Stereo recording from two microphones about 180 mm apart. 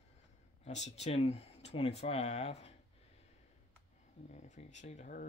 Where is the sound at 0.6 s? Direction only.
40° left (ahead or behind).